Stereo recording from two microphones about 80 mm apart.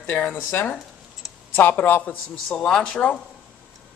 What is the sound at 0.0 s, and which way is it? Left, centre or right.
Speech, left.